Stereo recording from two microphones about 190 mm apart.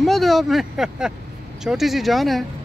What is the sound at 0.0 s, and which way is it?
Speech, centre (ahead or behind).